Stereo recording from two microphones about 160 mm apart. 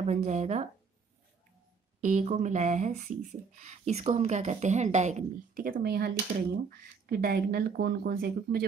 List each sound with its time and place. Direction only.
0.0 s speech: 45° right (ahead or behind)
2.0 s speech: 50° right (ahead or behind)
5.6 s speech: 65° right (ahead or behind); by 6.1 s 80° right
6.7 s speech: 70° right (ahead or behind)